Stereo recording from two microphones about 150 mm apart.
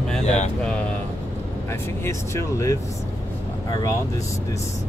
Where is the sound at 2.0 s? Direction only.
20° left (ahead or behind).